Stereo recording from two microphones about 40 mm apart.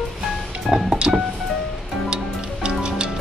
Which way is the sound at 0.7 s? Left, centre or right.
Centre.